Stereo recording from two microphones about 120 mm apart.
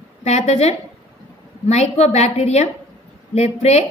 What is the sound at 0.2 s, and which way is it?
A woman's voice, 65° left (ahead or behind).